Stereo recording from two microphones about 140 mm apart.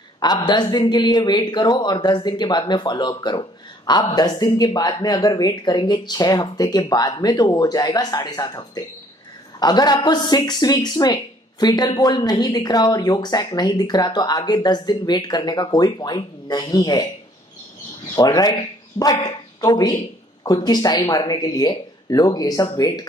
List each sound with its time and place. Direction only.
0.2 s a man's voice: 30° left (ahead or behind)
18.1 s speech: 25° left (ahead or behind)